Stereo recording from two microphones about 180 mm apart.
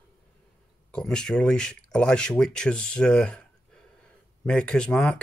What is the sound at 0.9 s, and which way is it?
Speech, 5° left (ahead or behind).